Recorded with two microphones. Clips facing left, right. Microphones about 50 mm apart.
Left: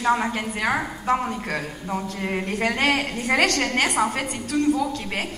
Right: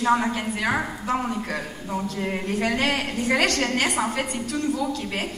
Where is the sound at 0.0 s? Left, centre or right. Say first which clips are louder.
Even; left.